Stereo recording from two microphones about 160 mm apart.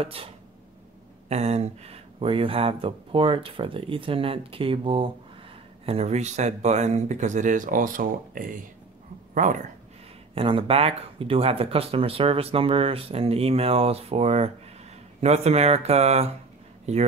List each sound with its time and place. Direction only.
0.0 s speech: 35° right (ahead or behind)
1.3 s speech: 40° right (ahead or behind)
10.3 s speech: 35° right (ahead or behind)